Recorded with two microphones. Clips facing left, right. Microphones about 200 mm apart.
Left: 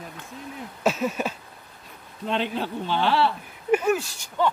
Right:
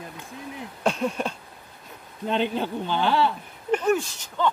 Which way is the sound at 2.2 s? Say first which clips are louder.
Right 2 dB; centre (ahead or behind).